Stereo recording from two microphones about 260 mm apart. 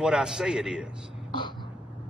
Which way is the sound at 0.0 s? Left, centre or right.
Centre.